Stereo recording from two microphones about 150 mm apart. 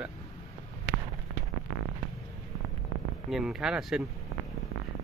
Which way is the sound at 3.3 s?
Centre (ahead or behind).